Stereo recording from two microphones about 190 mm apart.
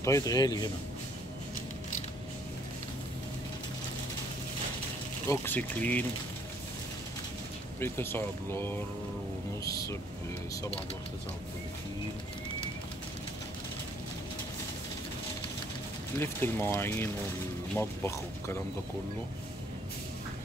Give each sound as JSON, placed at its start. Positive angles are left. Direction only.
{"t": 0.0, "sound": "speech", "side_deg": 15}
{"t": 5.2, "sound": "speech", "side_deg": 15}
{"t": 7.8, "sound": "speech", "side_deg": 10}
{"t": 16.2, "sound": "speech", "side_deg": 10}